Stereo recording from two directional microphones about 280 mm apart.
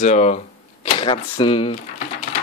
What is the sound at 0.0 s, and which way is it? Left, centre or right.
Speech, left.